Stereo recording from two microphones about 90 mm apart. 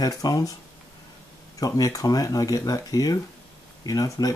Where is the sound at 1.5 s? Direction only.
40° left (ahead or behind).